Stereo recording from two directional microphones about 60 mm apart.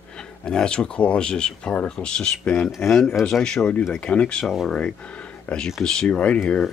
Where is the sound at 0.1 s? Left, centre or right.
Centre.